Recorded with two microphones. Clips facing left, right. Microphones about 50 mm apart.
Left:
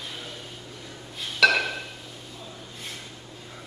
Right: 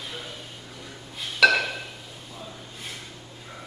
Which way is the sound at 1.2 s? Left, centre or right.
Centre.